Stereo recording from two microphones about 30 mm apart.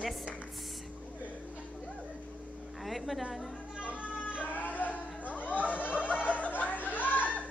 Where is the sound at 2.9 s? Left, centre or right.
Centre.